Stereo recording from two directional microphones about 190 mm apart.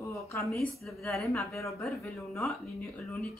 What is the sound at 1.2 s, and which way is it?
Speech, 15° left (ahead or behind).